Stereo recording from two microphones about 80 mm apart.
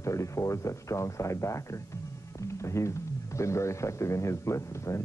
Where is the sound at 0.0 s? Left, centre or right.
Left.